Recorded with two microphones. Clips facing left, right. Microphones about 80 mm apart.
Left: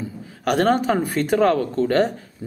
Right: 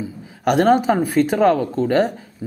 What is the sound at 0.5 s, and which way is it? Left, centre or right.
A man's voice, centre.